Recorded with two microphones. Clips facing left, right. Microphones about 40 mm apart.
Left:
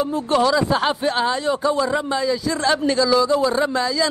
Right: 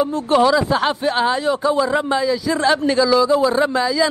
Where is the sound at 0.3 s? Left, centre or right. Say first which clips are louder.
Right 3 dB; centre.